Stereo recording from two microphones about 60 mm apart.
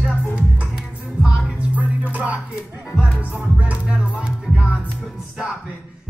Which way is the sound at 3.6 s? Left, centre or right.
Right.